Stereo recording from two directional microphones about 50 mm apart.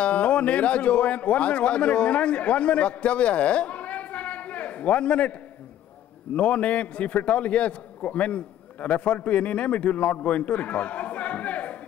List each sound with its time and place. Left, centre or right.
0.0 s a man's voice: left
6.3 s a man's voice: left